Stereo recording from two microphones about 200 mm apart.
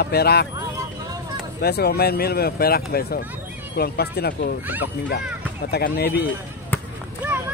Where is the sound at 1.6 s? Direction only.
50° left (ahead or behind).